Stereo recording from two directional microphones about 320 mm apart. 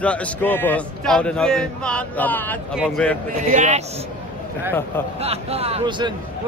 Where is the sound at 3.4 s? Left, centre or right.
Right.